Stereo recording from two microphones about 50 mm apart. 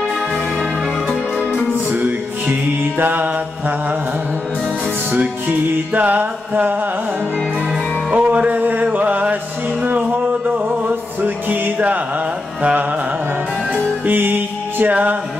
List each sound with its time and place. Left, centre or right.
1.9 s music: right
5.1 s music: right
8.2 s music: right
8.9 s chant: right
11.2 s music: right
13.7 s music: right